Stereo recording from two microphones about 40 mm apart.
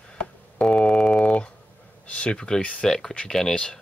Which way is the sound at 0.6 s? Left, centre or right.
Centre.